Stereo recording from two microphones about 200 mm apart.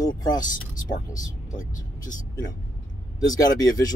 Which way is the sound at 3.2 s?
20° left (ahead or behind).